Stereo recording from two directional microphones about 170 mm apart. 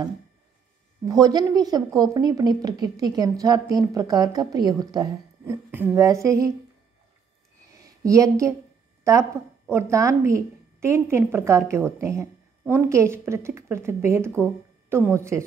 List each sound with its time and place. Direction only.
1.0 s a woman's voice: 20° right (ahead or behind)
7.7 s a woman's voice: 20° right (ahead or behind)